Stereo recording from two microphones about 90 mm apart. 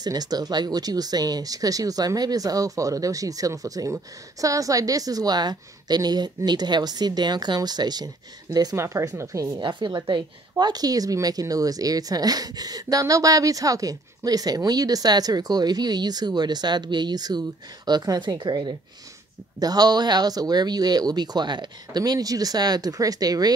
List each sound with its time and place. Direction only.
0.0 s speech: 45° right (ahead or behind)
8.7 s speech: 35° right (ahead or behind)
9.5 s a woman's voice: 60° right (ahead or behind)